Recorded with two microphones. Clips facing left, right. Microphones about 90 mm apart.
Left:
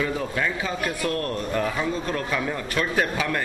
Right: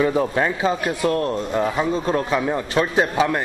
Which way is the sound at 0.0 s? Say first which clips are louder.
Right 7 dB; 35° right (ahead or behind).